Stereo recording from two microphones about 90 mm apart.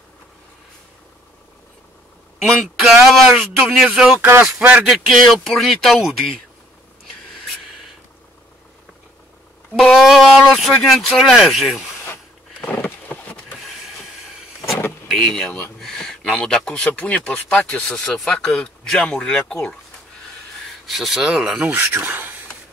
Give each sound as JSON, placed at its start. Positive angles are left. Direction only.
{"t": 2.5, "sound": "speech", "side_deg": 0}
{"t": 4.6, "sound": "speech", "side_deg": -15}
{"t": 4.8, "sound": "speech", "side_deg": 0}
{"t": 9.8, "sound": "speech", "side_deg": 0}
{"t": 12.6, "sound": "a sound", "side_deg": 20}
{"t": 15.0, "sound": "speech", "side_deg": 5}
{"t": 20.8, "sound": "speech", "side_deg": 0}
{"t": 21.5, "sound": "speech", "side_deg": -20}